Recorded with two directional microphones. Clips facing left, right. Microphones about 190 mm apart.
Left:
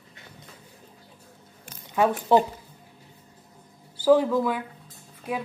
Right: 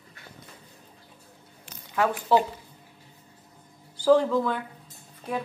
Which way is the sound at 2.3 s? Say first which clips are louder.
Left 2 dB; 20° left (ahead or behind).